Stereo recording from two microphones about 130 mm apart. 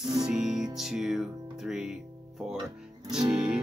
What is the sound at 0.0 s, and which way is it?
Music, 5° right (ahead or behind).